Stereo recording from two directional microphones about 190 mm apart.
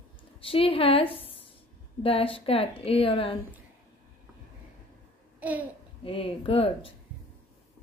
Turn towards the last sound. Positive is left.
turn(degrees=30)  # may be behind; listen again after turning